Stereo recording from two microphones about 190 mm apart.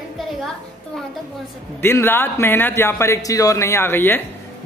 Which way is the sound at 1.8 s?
10° left (ahead or behind).